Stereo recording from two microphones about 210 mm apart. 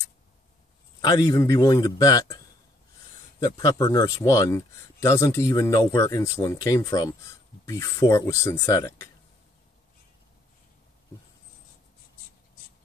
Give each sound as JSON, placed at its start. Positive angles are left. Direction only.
{"t": 1.0, "sound": "speech", "side_deg": 15}